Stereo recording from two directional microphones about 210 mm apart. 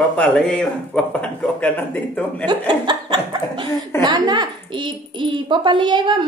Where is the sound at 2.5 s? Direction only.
20° right (ahead or behind).